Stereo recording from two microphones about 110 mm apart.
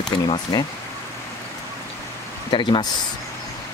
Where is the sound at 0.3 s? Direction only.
35° left (ahead or behind).